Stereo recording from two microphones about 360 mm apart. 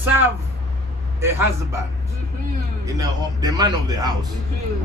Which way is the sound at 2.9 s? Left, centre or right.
Centre.